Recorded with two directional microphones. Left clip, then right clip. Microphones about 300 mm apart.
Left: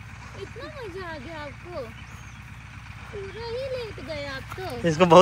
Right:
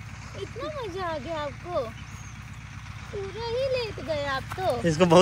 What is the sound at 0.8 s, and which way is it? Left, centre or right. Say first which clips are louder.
Speech: right 4 dB; centre.